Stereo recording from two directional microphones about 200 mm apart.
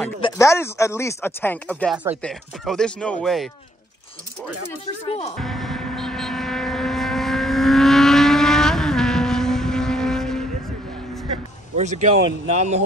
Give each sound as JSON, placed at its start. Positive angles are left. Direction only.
{"t": 0.2, "sound": "speech", "side_deg": 15}
{"t": 5.0, "sound": "speech", "side_deg": 30}
{"t": 5.4, "sound": "vehicle", "side_deg": 0}
{"t": 11.7, "sound": "speech", "side_deg": -35}